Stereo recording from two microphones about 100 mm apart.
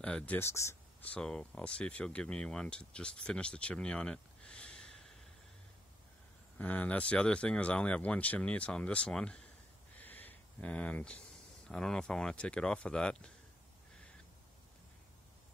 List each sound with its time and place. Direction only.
0.0 s speech: 15° left (ahead or behind)
0.4 s speech: 30° left (ahead or behind)
1.0 s speech: 10° left (ahead or behind)
6.6 s speech: 15° left (ahead or behind)